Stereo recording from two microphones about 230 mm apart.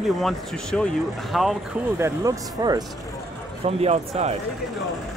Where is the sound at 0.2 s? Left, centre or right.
Centre.